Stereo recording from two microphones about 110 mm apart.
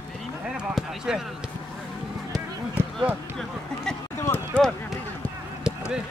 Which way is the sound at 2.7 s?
15° right (ahead or behind).